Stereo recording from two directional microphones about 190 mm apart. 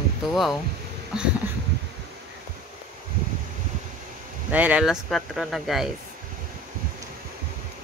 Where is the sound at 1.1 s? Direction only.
5° right (ahead or behind).